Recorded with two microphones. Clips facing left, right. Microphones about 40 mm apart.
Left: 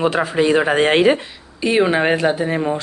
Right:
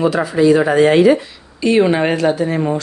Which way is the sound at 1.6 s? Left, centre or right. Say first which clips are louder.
Right 2 dB; centre.